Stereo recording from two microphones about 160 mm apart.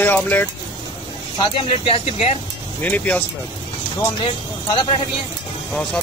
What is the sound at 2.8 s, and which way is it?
Speech, 10° left (ahead or behind).